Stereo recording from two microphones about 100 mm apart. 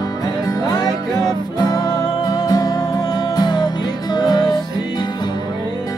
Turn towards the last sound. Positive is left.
turn(degrees=45)  # may be behind; listen again after turning